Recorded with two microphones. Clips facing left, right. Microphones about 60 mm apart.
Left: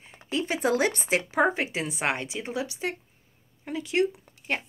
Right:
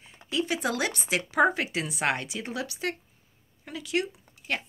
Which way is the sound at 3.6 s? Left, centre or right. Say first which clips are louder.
Left 4 dB; left.